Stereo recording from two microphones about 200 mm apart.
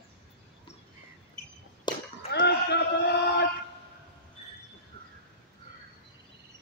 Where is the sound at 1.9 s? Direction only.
20° left (ahead or behind).